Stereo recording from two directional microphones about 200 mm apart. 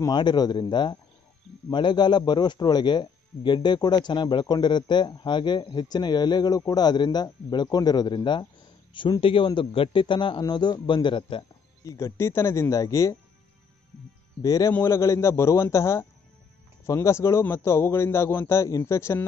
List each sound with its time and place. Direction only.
0.0 s a man's voice: 20° left (ahead or behind)
14.4 s a man's voice: 20° left (ahead or behind)